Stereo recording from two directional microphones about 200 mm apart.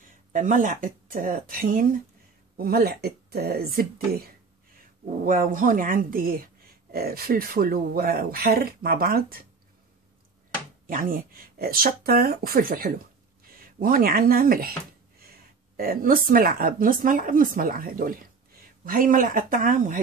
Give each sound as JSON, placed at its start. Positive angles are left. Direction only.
{"t": 0.3, "sound": "speech", "side_deg": -40}
{"t": 10.9, "sound": "a woman's voice", "side_deg": -45}